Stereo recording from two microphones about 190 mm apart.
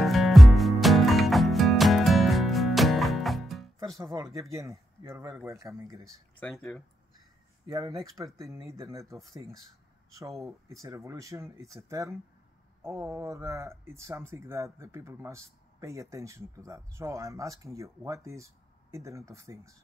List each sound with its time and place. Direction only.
0.0 s music: centre (ahead or behind)
4.0 s speech: 15° right (ahead or behind)
6.4 s speech: centre (ahead or behind)
7.6 s speech: 15° right (ahead or behind)